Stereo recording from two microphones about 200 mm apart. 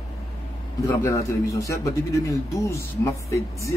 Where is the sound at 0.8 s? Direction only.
15° left (ahead or behind).